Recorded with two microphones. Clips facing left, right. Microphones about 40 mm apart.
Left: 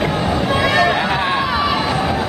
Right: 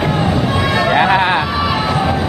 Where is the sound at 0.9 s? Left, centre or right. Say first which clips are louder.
Right 5 dB; right.